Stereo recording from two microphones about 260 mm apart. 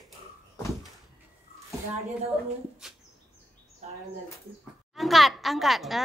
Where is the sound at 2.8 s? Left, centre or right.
Centre.